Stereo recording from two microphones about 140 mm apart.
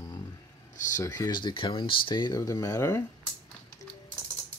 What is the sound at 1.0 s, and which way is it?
Speech, 25° left (ahead or behind).